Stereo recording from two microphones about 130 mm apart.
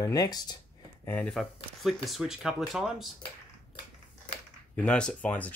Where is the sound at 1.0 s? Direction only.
15° left (ahead or behind).